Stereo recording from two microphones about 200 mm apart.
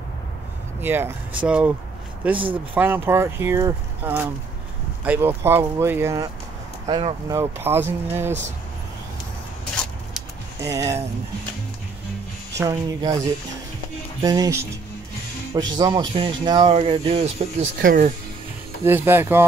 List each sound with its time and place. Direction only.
0.7 s speech: 10° right (ahead or behind)
7.3 s speech: 10° right (ahead or behind)
10.6 s speech: 15° right (ahead or behind)
12.5 s speech: 15° right (ahead or behind)
17.7 s speech: 45° right (ahead or behind)
18.9 s speech: 10° right (ahead or behind)